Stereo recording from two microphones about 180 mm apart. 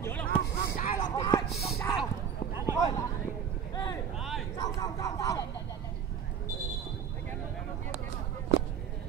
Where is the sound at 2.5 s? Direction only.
15° right (ahead or behind).